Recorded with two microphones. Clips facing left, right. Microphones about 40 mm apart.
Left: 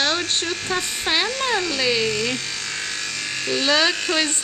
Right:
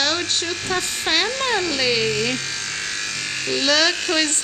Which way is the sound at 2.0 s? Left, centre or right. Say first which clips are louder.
Right 1 dB; centre.